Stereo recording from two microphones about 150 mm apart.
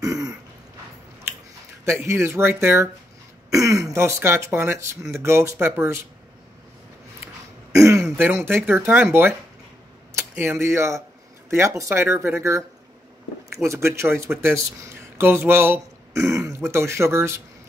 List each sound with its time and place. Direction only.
0.0 s throat clearing: 25° right (ahead or behind)
1.9 s speech: 15° right (ahead or behind)
7.7 s speech: 20° right (ahead or behind)